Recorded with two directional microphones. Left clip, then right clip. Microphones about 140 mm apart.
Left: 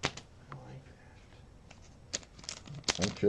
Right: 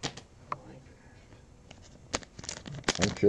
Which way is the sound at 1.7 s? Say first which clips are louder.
Right 5 dB; 25° right (ahead or behind).